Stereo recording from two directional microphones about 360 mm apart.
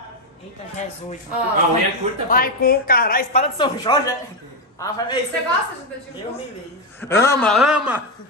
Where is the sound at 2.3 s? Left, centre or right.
Left.